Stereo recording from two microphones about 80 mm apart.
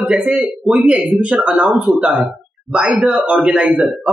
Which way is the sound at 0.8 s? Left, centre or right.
Centre.